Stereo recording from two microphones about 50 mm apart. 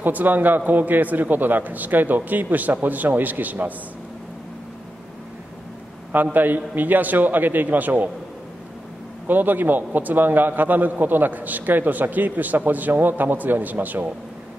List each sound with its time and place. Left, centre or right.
0.0 s a man's voice: right
6.3 s a man's voice: right
9.3 s a man's voice: right